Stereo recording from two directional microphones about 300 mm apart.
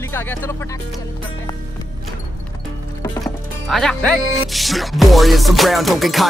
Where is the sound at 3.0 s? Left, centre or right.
Centre.